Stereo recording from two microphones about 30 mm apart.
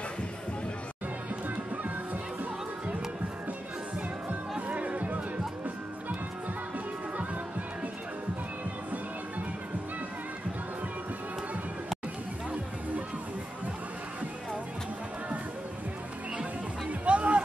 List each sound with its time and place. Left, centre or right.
4.3 s music: right
17.0 s music: right